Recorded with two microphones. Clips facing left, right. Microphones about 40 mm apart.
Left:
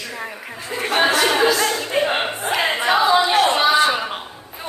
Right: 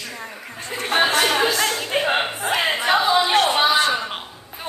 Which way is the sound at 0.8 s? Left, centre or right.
Left.